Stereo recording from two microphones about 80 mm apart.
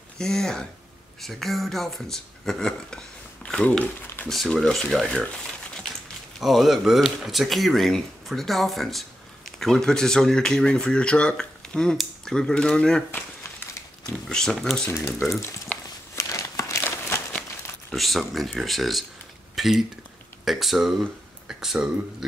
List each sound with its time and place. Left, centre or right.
0.2 s speech: centre
6.4 s speech: centre
13.1 s crumpling: left
14.0 s speech: centre
14.9 s speech: left
15.7 s a sound: centre
16.2 s crumpling: left
17.9 s speech: centre
19.5 s a sound: centre
20.4 s speech: centre